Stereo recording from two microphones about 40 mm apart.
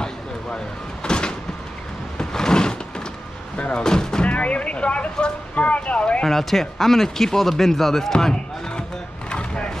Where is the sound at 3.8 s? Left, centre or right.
Centre.